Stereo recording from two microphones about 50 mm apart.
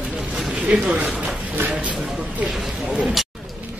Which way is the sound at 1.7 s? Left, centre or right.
Right.